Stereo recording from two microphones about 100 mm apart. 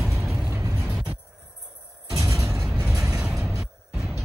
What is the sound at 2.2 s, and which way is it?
Music, 30° right (ahead or behind).